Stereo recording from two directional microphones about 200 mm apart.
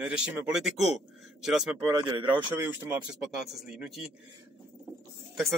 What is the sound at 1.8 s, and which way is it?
Speech, 25° right (ahead or behind).